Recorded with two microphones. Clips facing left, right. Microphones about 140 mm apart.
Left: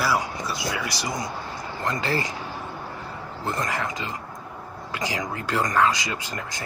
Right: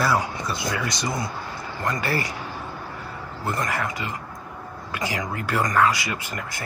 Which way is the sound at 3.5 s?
20° left (ahead or behind).